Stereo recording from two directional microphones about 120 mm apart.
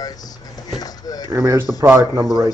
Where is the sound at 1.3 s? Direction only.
25° right (ahead or behind).